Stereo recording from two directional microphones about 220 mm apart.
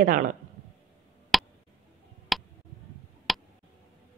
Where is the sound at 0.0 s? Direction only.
35° right (ahead or behind).